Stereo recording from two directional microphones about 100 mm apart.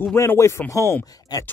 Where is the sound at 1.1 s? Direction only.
40° left (ahead or behind).